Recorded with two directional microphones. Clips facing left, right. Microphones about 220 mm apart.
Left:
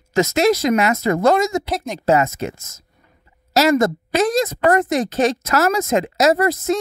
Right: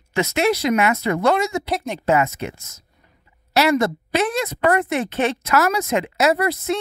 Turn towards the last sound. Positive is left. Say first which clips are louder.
# left 3 dB
turn(degrees=45)  # may be behind; listen again after turning